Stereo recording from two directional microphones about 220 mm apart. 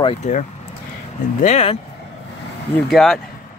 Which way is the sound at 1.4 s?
30° left (ahead or behind).